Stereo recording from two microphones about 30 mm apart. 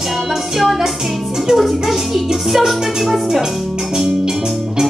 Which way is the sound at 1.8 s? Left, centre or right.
Centre.